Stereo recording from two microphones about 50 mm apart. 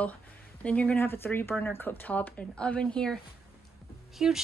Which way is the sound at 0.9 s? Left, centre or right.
Left.